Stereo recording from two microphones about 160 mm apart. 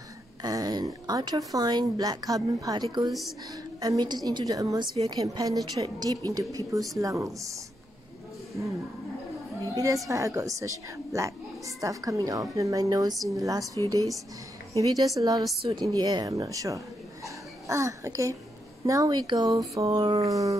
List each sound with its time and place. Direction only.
0.4 s a woman's voice: 25° right (ahead or behind)
3.1 s a woman's voice: centre (ahead or behind)
3.8 s a woman's voice: 25° right (ahead or behind)
10.0 s a woman's voice: 20° right (ahead or behind)